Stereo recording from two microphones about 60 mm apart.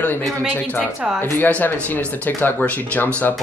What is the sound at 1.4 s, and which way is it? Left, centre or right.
Speech, left.